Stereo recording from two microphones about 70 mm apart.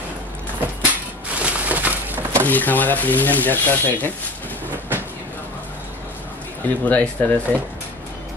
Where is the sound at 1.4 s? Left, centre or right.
Right.